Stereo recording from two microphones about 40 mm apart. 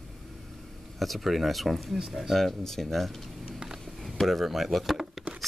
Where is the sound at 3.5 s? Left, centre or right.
Centre.